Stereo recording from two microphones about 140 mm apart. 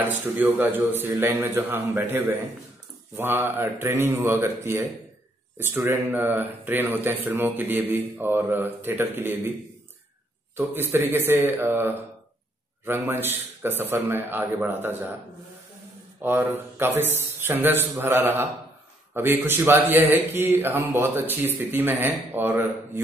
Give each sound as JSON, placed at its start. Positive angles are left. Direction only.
{"t": 0.3, "sound": "speech", "side_deg": -15}
{"t": 10.5, "sound": "speech", "side_deg": -15}
{"t": 16.2, "sound": "speech", "side_deg": -15}